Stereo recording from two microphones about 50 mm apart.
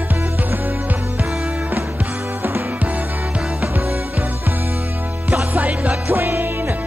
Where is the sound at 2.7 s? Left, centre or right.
Right.